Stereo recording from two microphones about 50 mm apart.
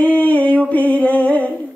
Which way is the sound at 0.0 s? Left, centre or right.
Left.